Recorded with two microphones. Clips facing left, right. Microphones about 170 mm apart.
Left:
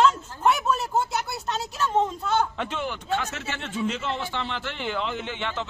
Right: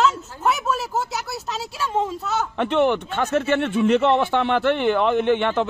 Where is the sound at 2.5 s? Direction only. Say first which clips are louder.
Right 12 dB; 65° right (ahead or behind).